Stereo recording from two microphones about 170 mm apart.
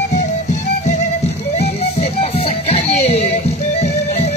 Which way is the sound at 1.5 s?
40° left (ahead or behind).